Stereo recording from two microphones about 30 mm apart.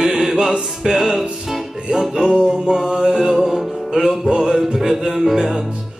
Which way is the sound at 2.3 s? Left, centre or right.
Right.